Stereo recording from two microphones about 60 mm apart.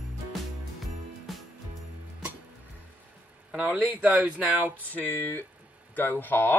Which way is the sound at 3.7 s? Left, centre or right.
Right.